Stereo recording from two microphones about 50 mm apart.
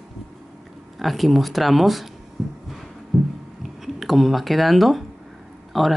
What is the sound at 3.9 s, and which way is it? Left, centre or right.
Speech, centre.